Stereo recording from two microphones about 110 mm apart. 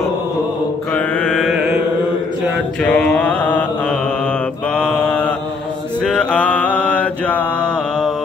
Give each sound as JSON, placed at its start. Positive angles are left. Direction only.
{"t": 0.9, "sound": "mantra", "side_deg": 10}
{"t": 1.4, "sound": "mantra", "side_deg": -5}
{"t": 2.8, "sound": "mantra", "side_deg": 10}
{"t": 4.7, "sound": "mantra", "side_deg": 10}